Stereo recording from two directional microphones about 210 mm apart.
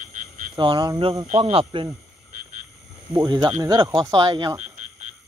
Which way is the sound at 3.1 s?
20° right (ahead or behind).